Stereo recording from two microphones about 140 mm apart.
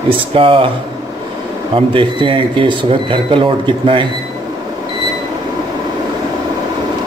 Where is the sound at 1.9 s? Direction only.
40° right (ahead or behind).